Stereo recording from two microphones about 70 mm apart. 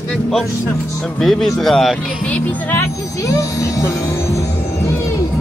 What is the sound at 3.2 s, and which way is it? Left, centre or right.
Speech, left.